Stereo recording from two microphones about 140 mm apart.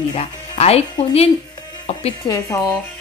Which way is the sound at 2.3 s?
25° left (ahead or behind).